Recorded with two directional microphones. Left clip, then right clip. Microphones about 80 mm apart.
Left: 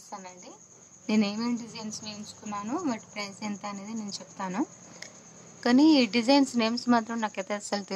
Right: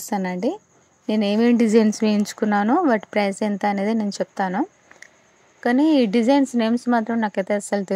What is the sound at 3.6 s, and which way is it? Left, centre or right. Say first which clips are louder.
Speech: right 16 dB; right.